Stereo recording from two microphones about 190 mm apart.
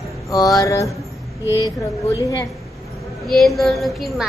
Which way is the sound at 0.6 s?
15° left (ahead or behind).